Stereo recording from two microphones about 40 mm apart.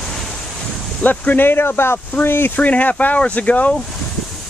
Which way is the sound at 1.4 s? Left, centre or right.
Left.